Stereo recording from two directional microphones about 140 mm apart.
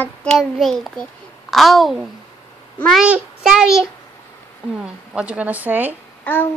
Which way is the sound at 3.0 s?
5° right (ahead or behind).